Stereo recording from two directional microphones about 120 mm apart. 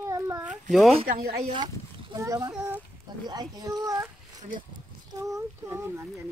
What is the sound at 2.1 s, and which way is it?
Speech, 25° right (ahead or behind).